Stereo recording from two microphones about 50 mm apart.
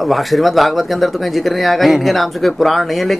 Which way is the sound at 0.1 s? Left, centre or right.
Centre.